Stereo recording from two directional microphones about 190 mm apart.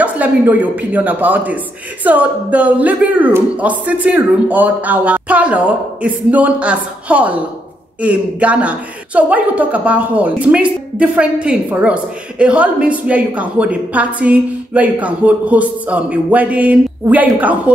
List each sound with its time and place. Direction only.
0.0 s speech: 10° right (ahead or behind)